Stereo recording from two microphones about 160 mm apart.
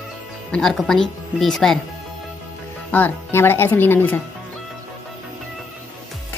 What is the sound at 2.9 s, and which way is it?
Speech, 15° left (ahead or behind).